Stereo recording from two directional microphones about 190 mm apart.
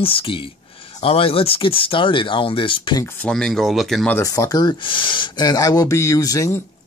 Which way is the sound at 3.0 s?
5° left (ahead or behind).